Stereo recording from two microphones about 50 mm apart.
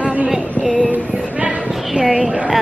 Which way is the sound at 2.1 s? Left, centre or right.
Centre.